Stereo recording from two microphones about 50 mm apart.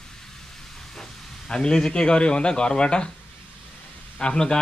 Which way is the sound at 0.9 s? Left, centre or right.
Centre.